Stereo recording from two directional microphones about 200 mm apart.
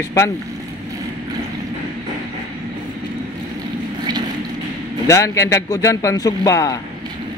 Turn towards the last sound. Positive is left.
turn(degrees=15)  # may be behind; listen again after turning